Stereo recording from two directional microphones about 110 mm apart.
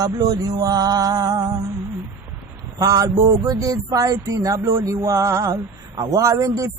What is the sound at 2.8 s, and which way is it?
Speech, 30° right (ahead or behind).